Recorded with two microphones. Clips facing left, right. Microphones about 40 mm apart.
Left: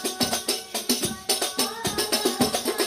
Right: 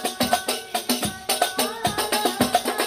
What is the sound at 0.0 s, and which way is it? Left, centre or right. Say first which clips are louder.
Music: right 5 dB; right.